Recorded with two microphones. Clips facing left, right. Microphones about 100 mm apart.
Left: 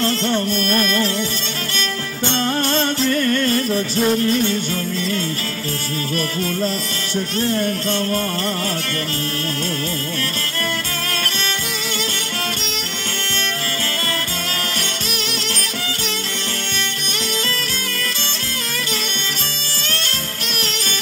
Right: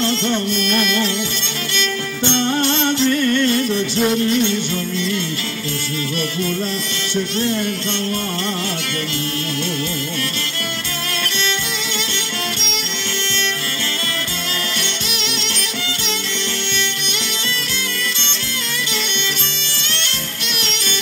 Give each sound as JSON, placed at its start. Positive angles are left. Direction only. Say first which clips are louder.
{"t": 0.0, "sound": "music", "louder": "even", "side_deg": 40}